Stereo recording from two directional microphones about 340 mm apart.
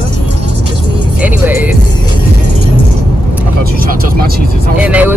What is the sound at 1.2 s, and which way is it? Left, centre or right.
Speech, centre.